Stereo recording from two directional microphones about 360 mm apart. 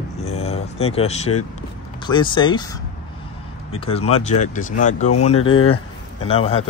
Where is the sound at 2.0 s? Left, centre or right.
Centre.